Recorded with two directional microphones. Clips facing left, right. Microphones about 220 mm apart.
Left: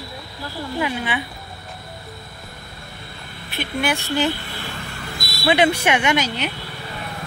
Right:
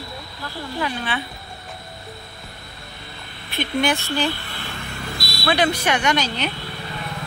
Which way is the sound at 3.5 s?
5° left (ahead or behind).